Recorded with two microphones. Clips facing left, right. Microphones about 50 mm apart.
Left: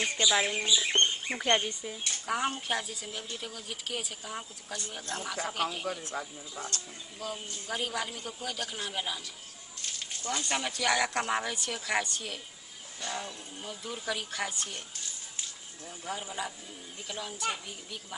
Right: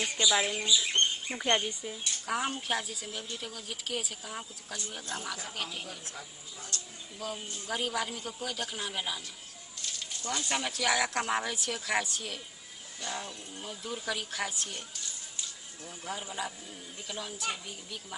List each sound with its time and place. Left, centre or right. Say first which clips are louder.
0.0 s speech: left 1 dB; left
1.4 s speech: left 1 dB; centre
1.9 s speech: left 1 dB; centre
6.1 s speech: left 7 dB; left
7.2 s speech: even; centre
9.8 s a sound: even; left
10.4 s speech: even; centre
13.6 s speech: right 1 dB; centre
16.1 s speech: left 1 dB; centre